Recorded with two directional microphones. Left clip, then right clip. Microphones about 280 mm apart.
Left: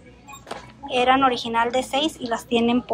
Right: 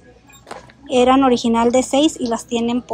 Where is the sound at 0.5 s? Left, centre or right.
Centre.